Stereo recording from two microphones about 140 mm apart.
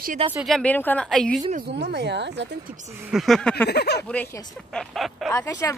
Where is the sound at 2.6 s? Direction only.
65° right (ahead or behind).